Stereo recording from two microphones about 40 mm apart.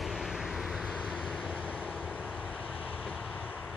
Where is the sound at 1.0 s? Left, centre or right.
Right.